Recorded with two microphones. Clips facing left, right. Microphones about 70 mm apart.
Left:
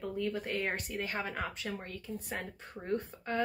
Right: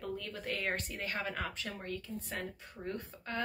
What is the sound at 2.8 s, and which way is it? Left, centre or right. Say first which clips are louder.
Speech: left 6 dB; left.